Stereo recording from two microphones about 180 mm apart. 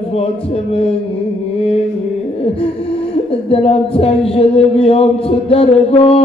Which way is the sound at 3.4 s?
30° left (ahead or behind).